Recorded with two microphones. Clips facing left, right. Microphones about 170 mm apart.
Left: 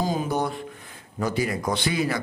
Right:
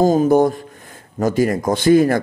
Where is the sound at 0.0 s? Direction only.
45° right (ahead or behind).